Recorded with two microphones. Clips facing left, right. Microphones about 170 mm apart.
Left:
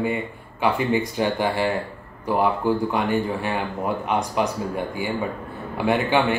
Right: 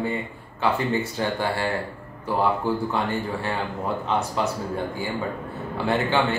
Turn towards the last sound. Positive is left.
turn(degrees=15)  # may be behind; listen again after turning